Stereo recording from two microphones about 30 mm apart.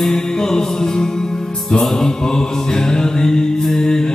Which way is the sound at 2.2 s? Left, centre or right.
Left.